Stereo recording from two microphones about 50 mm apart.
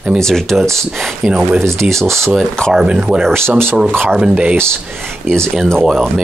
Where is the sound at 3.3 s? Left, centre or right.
Right.